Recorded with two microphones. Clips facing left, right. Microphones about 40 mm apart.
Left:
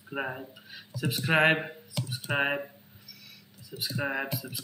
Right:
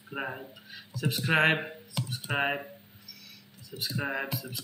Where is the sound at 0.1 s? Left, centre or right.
Centre.